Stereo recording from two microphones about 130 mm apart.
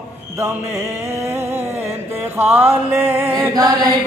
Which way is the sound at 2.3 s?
15° right (ahead or behind).